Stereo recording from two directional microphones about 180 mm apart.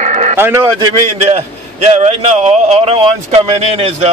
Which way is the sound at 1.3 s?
35° right (ahead or behind).